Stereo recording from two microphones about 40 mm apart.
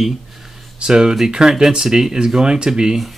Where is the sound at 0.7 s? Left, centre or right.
Centre.